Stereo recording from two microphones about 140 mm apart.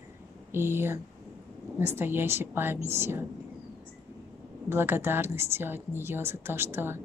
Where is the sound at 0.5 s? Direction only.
15° right (ahead or behind).